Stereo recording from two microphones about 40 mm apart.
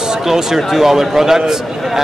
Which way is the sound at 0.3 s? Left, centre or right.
Centre.